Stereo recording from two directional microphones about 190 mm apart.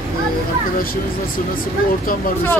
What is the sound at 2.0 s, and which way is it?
Speech, 50° left (ahead or behind).